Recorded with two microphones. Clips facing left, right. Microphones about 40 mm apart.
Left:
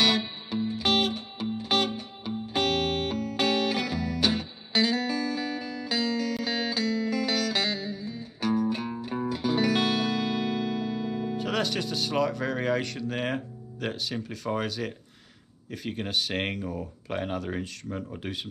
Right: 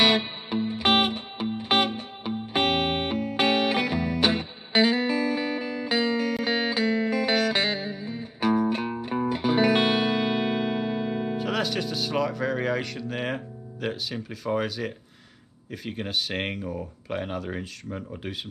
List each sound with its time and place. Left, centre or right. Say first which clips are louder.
0.0 s music: right 3 dB; right
11.3 s speech: left 1 dB; centre